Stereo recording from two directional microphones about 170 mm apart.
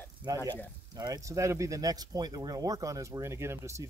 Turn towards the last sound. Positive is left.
turn(degrees=-15)  # may be behind; listen again after turning